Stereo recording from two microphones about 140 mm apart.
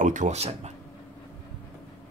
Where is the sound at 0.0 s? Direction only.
65° right (ahead or behind).